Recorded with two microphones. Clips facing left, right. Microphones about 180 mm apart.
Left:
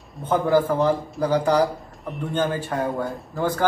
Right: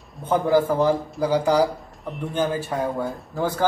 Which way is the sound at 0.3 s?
10° right (ahead or behind).